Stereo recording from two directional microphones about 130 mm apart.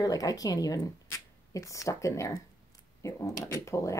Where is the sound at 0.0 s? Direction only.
25° left (ahead or behind).